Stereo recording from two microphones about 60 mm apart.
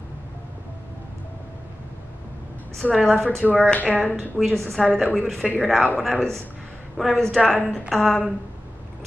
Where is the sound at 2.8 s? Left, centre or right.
Left.